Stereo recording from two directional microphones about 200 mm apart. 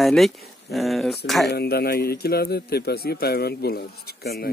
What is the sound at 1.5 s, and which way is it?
A man's voice, 50° left (ahead or behind).